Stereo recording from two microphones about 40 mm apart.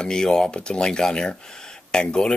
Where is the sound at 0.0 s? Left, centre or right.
Centre.